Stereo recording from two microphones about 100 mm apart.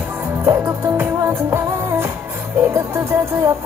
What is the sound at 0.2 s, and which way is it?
Music, 20° right (ahead or behind).